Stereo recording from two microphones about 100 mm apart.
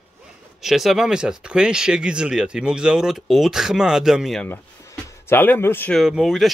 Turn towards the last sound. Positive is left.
turn(degrees=0)  # may be behind; listen again after turning